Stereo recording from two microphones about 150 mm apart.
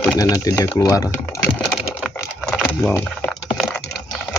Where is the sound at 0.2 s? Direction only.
25° left (ahead or behind).